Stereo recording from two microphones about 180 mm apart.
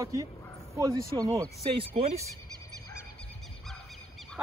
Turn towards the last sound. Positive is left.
turn(degrees=0)  # may be behind; listen again after turning